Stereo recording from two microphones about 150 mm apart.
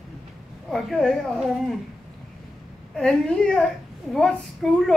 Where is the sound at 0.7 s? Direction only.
5° left (ahead or behind).